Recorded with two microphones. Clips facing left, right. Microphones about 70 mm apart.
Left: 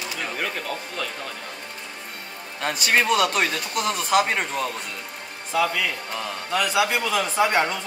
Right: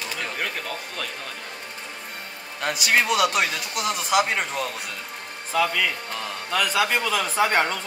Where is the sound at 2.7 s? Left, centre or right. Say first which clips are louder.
Left 1 dB; left.